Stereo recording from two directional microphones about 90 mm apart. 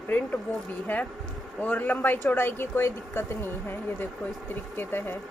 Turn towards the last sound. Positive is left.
turn(degrees=25)  # may be behind; listen again after turning